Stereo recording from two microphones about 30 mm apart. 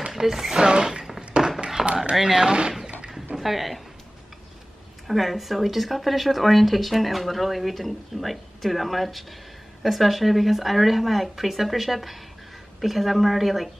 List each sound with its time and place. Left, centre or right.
0.1 s speech: centre
0.6 s speech: right
1.3 s a sound: right
1.8 s a sound: centre
2.2 s speech: centre
3.3 s speech: centre
5.0 s speech: centre